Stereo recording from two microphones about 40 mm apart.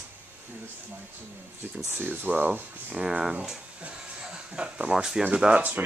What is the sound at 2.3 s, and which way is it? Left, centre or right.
Speech, right.